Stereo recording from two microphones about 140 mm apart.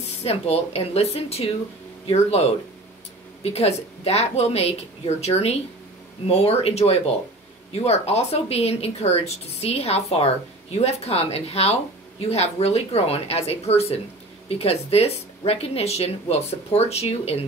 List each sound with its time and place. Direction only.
0.2 s speech: 45° left (ahead or behind)